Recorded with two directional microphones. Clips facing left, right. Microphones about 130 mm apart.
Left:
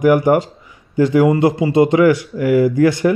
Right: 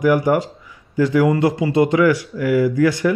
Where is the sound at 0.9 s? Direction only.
20° left (ahead or behind).